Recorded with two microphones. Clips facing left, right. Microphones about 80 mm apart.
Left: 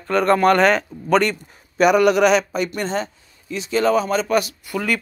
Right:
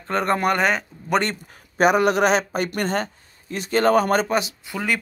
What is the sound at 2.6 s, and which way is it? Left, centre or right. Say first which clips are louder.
Speech: even; right.